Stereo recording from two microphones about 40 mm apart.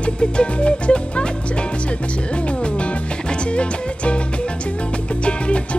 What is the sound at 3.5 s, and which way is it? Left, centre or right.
Music, left.